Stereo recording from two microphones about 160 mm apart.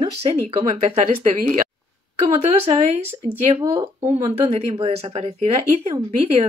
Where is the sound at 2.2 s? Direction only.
40° right (ahead or behind).